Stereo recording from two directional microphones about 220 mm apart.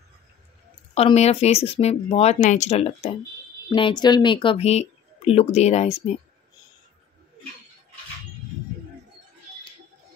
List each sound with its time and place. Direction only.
0.9 s speech: 30° left (ahead or behind)